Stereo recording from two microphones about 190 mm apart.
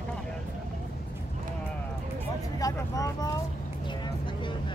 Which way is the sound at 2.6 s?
15° left (ahead or behind).